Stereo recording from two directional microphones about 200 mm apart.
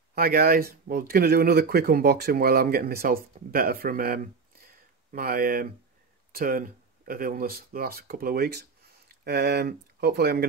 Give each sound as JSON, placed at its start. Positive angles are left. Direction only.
{"t": 0.1, "sound": "speech", "side_deg": -50}